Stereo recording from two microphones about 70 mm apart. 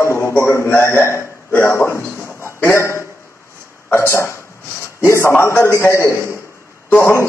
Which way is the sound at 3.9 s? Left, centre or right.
Left.